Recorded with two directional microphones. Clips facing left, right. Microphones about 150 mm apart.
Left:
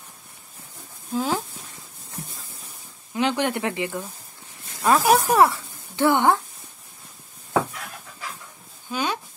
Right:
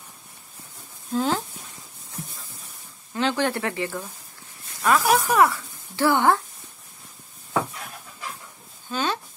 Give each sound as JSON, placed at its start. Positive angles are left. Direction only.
{"t": 1.1, "sound": "speech", "side_deg": 10}
{"t": 3.1, "sound": "speech", "side_deg": 15}
{"t": 4.8, "sound": "speech", "side_deg": 35}
{"t": 8.9, "sound": "a sound", "side_deg": 10}